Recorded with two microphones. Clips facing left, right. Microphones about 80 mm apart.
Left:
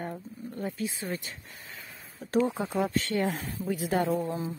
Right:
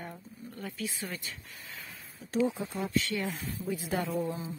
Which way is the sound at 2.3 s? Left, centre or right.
Left.